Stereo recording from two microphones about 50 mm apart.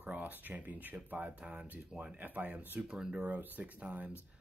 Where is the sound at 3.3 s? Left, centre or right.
Right.